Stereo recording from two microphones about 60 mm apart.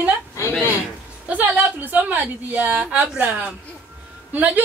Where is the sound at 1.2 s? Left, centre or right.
Right.